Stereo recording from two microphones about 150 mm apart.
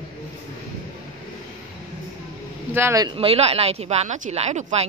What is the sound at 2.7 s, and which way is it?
Speech, 20° right (ahead or behind).